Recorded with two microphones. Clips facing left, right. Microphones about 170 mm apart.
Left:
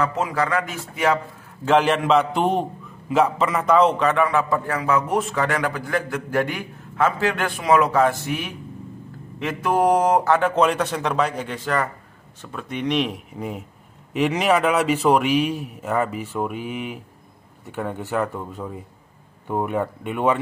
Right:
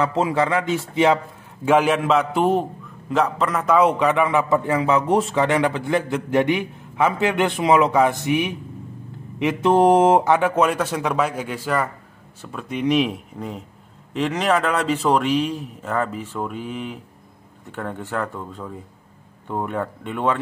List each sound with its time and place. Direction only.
0.0 s a man's voice: 25° right (ahead or behind)
1.6 s a man's voice: 10° right (ahead or behind)
13.4 s a man's voice: 10° left (ahead or behind)